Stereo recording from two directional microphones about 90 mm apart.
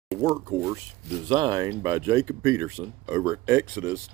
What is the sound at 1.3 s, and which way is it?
Speech, 55° right (ahead or behind).